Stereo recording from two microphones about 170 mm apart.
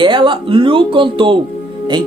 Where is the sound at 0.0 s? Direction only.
30° right (ahead or behind).